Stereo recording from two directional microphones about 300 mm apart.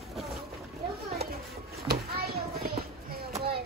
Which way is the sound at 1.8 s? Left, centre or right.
Right.